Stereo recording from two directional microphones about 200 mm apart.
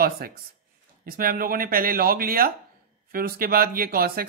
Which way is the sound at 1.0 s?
45° right (ahead or behind).